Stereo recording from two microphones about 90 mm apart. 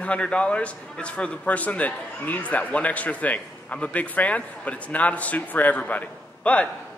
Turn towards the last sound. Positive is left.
turn(degrees=15)  # may be behind; listen again after turning